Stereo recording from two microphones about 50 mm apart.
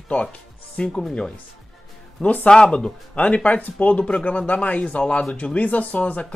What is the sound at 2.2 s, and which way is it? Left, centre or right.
Speech, left.